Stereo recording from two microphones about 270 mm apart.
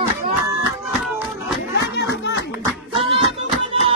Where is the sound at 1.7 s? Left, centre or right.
Left.